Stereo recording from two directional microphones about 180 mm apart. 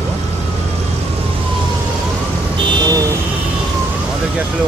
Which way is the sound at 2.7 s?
25° right (ahead or behind).